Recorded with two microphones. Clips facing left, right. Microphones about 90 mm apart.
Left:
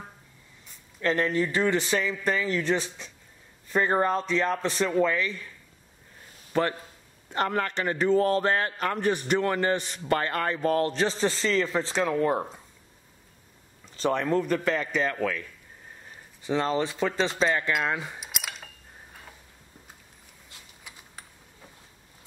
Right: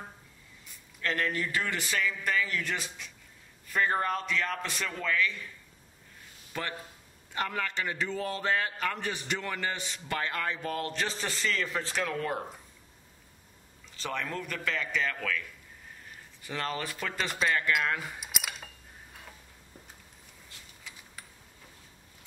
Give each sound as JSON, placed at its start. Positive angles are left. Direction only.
{"t": 1.0, "sound": "a man's voice", "side_deg": 30}
{"t": 7.2, "sound": "a man's voice", "side_deg": 45}
{"t": 13.9, "sound": "a man's voice", "side_deg": 30}
{"t": 16.4, "sound": "a man's voice", "side_deg": 25}
{"t": 18.2, "sound": "a sound", "side_deg": 0}
{"t": 20.9, "sound": "a sound", "side_deg": 15}